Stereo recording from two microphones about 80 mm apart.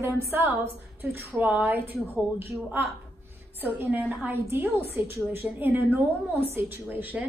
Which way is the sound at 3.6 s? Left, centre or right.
Right.